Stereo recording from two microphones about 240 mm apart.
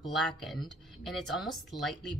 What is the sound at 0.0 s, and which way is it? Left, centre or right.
A woman's voice, centre.